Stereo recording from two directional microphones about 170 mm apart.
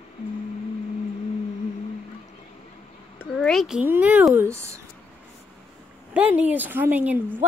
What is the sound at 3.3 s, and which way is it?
Speech, centre (ahead or behind).